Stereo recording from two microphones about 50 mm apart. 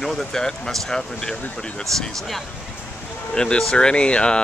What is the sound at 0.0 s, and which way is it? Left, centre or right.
Speech, centre.